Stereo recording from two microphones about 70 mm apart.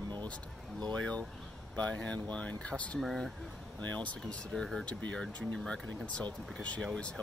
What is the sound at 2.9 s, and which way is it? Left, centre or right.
Speech, centre.